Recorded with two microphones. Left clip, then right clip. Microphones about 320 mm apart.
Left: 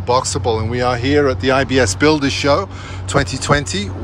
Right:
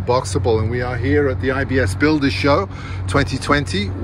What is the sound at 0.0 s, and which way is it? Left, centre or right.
Speech, centre.